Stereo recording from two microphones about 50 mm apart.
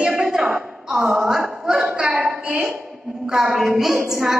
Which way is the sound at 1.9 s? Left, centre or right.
Right.